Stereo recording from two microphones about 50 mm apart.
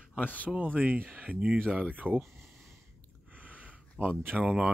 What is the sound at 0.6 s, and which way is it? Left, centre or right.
Speech, right.